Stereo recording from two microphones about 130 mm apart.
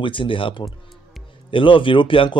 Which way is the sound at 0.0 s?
40° left (ahead or behind).